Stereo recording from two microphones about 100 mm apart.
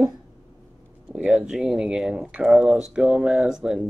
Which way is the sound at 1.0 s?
10° right (ahead or behind).